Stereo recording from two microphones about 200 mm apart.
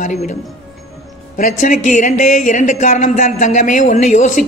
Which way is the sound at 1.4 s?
40° left (ahead or behind).